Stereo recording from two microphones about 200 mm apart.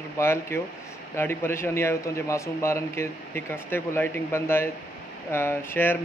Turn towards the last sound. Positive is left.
turn(degrees=10)  # may be behind; listen again after turning